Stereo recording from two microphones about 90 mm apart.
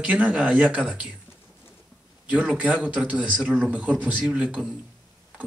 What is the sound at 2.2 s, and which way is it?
Speech, 15° right (ahead or behind).